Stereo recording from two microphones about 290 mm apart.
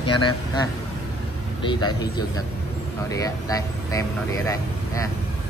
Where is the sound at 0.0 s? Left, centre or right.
Centre.